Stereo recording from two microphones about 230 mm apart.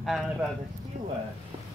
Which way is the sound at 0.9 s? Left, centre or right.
Right.